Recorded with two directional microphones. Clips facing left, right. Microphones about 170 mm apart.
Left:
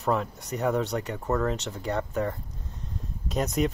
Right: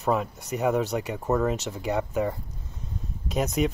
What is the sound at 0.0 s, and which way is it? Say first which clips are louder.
Speech: right 1 dB; 5° right (ahead or behind).